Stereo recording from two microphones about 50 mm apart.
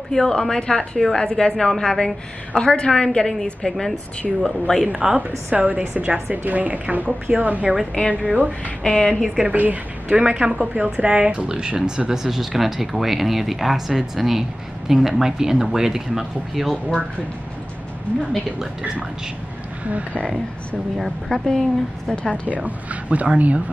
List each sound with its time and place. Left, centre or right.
0.1 s a woman's voice: centre
5.5 s a woman's voice: right
8.6 s a woman's voice: centre
9.5 s a woman's voice: right
10.1 s speech: right
12.1 s speech: centre
19.9 s a woman's voice: right
21.0 s a woman's voice: centre
22.5 s speech: right